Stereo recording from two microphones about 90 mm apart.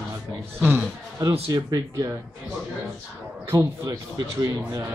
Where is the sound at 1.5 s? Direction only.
45° right (ahead or behind).